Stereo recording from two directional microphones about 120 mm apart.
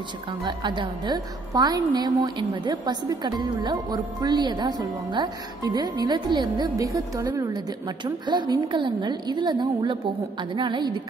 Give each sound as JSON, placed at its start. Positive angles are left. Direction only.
{"t": 0.4, "sound": "a woman's voice", "side_deg": -40}